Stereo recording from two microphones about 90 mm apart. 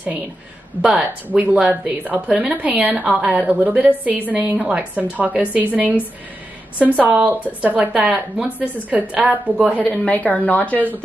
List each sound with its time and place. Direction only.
0.8 s speech: 15° right (ahead or behind)
10.0 s speech: 15° left (ahead or behind)